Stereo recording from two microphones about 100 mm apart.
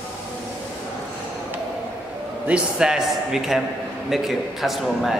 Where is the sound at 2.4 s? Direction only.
5° right (ahead or behind).